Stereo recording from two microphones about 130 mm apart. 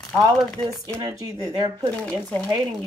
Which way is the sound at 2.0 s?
10° left (ahead or behind).